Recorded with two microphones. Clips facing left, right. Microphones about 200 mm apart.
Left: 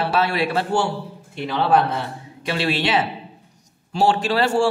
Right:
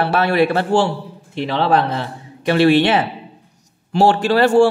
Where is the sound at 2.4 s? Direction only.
55° right (ahead or behind).